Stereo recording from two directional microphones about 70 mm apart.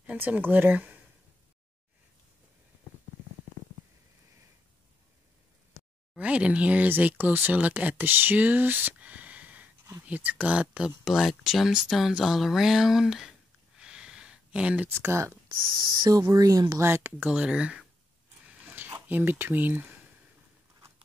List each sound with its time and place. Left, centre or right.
0.0 s speech: right
6.1 s speech: centre
11.1 s speech: centre
14.9 s speech: right
16.0 s speech: right
16.8 s speech: right
17.2 s speech: centre
18.5 s a sound: right
19.0 s speech: right